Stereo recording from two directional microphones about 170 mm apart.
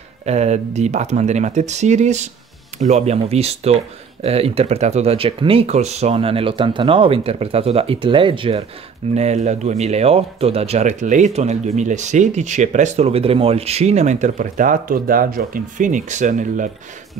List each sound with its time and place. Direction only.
0.2 s speech: 40° right (ahead or behind)